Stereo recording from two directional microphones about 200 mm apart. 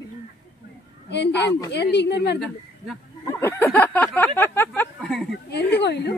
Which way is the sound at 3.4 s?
10° left (ahead or behind).